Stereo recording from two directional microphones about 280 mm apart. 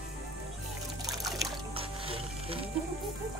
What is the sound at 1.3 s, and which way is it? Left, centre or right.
Music, centre.